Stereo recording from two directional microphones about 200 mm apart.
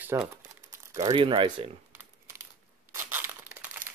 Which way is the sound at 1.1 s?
25° right (ahead or behind).